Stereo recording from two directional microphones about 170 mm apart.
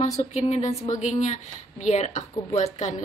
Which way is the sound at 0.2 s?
40° left (ahead or behind).